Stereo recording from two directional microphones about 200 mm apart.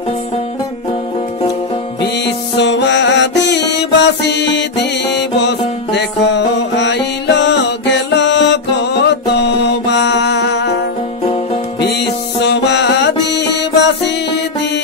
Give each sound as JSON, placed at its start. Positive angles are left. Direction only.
{"t": 2.1, "sound": "music", "side_deg": 60}
{"t": 11.8, "sound": "music", "side_deg": 55}